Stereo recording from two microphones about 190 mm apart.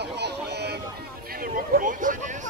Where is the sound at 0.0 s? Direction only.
60° right (ahead or behind).